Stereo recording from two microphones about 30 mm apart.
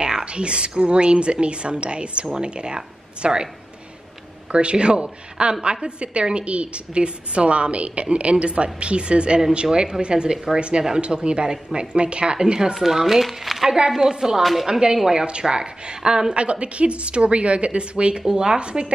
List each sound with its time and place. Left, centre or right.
0.2 s a woman's voice: right
4.5 s a woman's voice: right
11.0 s a woman's voice: right
12.7 s speech: centre
13.7 s speech: right
14.4 s speech: centre
14.7 s speech: right
16.3 s a woman's voice: right
18.3 s speech: right